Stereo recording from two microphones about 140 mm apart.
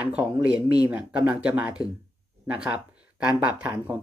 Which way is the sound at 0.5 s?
30° left (ahead or behind).